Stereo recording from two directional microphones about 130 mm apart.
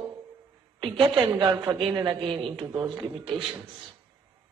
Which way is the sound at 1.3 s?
35° right (ahead or behind).